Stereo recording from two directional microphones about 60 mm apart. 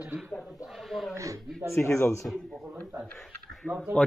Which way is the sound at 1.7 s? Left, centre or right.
Left.